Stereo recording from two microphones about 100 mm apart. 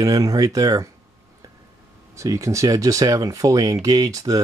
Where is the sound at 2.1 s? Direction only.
35° right (ahead or behind).